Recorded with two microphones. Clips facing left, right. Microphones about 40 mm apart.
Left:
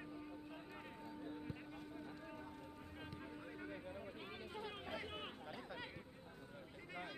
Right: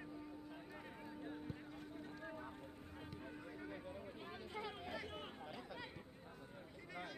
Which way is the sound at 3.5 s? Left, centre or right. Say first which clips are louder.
Left 1 dB; centre.